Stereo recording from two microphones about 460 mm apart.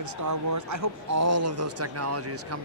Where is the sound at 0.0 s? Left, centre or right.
Right.